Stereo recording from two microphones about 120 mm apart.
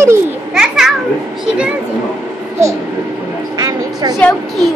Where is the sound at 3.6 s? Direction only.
35° right (ahead or behind).